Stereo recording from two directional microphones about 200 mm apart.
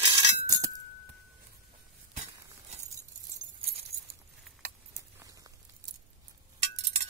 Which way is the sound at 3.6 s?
30° right (ahead or behind).